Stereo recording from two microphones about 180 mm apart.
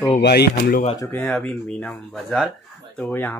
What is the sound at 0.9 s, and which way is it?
Speech, 15° left (ahead or behind).